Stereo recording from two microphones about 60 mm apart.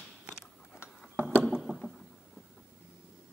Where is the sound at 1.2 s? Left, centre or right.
Right.